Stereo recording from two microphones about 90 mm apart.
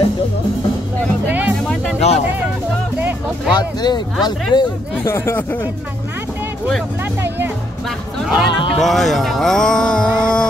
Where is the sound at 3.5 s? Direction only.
50° left (ahead or behind).